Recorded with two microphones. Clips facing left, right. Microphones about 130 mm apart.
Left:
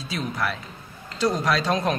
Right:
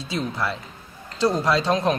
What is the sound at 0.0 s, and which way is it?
A man's voice, 25° right (ahead or behind).